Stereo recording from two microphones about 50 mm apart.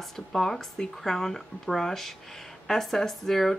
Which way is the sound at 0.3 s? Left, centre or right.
Centre.